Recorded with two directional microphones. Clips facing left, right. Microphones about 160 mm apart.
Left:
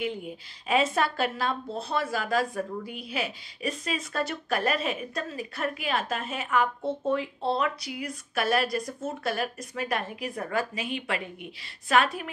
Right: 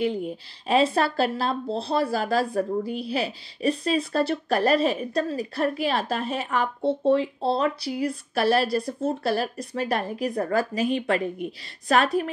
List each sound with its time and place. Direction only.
0.7 s speech: 35° right (ahead or behind)